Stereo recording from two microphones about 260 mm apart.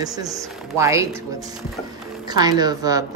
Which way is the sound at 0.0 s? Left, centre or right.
Centre.